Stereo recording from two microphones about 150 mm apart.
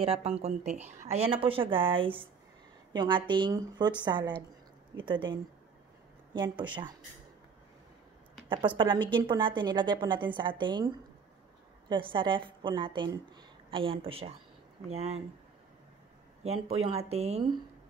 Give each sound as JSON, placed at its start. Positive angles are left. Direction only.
{"t": 0.0, "sound": "a woman's voice", "side_deg": -40}
{"t": 8.5, "sound": "a woman's voice", "side_deg": -30}
{"t": 11.9, "sound": "a woman's voice", "side_deg": -35}
{"t": 16.4, "sound": "speech", "side_deg": -45}